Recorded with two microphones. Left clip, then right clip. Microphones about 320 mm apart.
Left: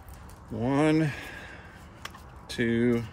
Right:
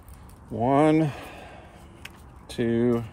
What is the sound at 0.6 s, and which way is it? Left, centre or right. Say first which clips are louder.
Speech: right 5 dB; centre.